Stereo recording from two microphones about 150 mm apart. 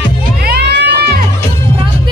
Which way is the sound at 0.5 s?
90° right.